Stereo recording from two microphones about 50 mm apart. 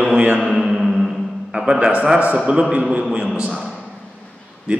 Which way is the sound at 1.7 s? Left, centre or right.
Right.